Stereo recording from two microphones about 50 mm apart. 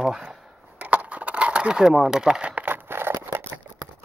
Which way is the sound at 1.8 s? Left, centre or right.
Centre.